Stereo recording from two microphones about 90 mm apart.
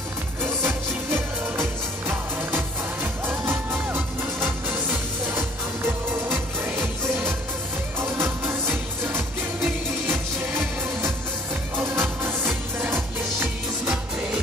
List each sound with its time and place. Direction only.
0.4 s music: 25° right (ahead or behind)
6.3 s music: 25° right (ahead or behind)